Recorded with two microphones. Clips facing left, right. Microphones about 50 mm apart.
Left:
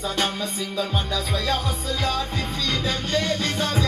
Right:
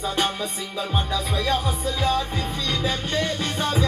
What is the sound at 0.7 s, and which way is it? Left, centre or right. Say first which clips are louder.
Music: right 1 dB; centre.